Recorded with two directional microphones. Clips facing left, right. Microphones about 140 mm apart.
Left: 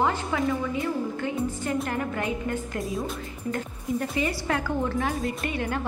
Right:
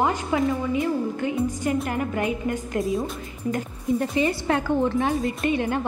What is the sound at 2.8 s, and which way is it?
Speech, centre (ahead or behind).